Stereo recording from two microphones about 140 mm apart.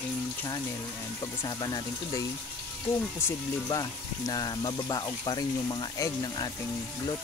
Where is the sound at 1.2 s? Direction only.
30° left (ahead or behind).